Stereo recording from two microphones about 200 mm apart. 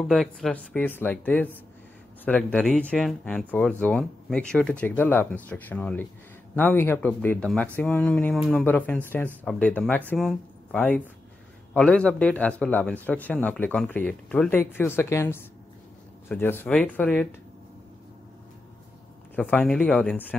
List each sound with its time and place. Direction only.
0.1 s speech: centre (ahead or behind)
19.3 s speech: 10° left (ahead or behind)